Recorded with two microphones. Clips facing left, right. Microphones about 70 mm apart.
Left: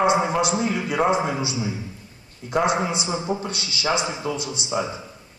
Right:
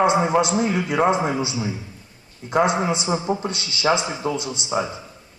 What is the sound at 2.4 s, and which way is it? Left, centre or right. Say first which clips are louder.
Speech: right 2 dB; right.